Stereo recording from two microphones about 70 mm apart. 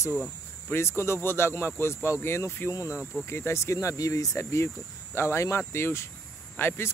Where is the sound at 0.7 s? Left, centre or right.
Left.